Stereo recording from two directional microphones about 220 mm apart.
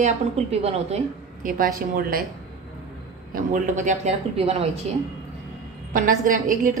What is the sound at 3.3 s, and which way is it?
A woman's voice, 35° right (ahead or behind).